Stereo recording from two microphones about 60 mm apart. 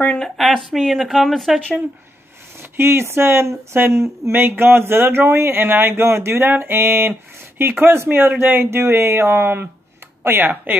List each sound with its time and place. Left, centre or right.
0.4 s speech: centre
2.8 s speech: right